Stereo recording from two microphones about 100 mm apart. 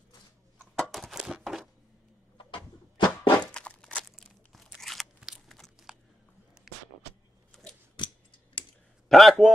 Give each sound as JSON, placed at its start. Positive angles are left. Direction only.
{"t": 0.7, "sound": "a sound", "side_deg": 5}
{"t": 2.3, "sound": "a sound", "side_deg": 55}
{"t": 3.5, "sound": "crunch", "side_deg": 10}
{"t": 8.0, "sound": "typing", "side_deg": 50}
{"t": 8.6, "sound": "clicking", "side_deg": 55}
{"t": 9.1, "sound": "a man's voice", "side_deg": 0}